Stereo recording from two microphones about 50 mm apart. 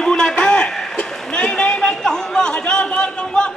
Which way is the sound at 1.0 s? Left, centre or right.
Centre.